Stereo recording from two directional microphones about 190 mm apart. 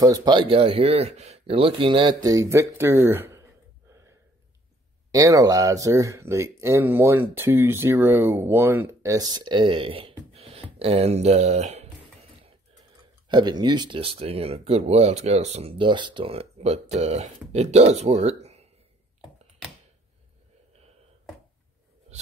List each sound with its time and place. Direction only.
0.0 s speech: 20° right (ahead or behind)
5.1 s speech: 15° right (ahead or behind); by 11.9 s 35° right (ahead or behind)
13.3 s speech: 25° right (ahead or behind)